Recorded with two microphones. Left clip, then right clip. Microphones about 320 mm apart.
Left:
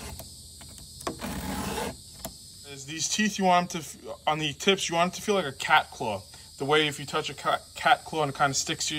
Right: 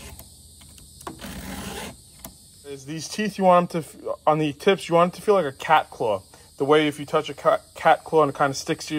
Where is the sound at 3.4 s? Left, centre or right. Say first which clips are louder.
Right 7 dB; centre.